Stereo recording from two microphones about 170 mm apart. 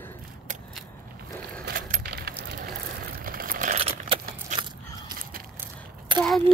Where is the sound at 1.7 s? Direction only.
55° right (ahead or behind).